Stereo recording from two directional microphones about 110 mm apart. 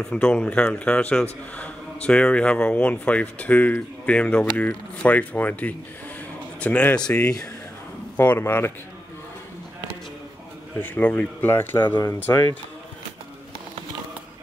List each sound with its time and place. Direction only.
0.0 s speech: 10° left (ahead or behind)
10.8 s speech: 15° left (ahead or behind)